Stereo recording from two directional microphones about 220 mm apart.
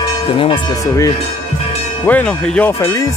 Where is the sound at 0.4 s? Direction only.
20° left (ahead or behind).